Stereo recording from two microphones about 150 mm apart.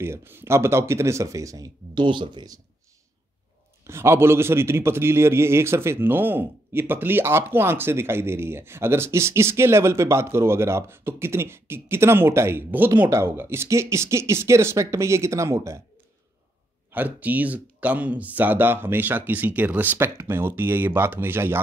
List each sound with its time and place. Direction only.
0.0 s speech: 15° right (ahead or behind)
3.8 s a man's voice: 15° right (ahead or behind)
16.9 s a man's voice: 10° right (ahead or behind)